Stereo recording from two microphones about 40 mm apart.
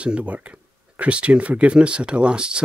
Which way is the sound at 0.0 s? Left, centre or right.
Right.